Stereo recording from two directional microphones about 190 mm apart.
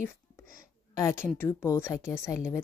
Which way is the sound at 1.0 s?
15° left (ahead or behind).